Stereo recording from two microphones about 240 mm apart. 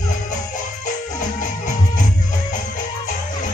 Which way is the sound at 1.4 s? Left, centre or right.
Left.